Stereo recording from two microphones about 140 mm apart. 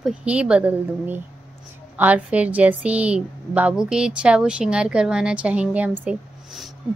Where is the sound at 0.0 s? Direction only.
10° right (ahead or behind).